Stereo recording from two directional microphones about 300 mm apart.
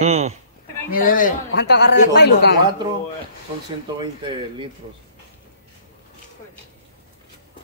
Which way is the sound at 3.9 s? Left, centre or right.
Centre.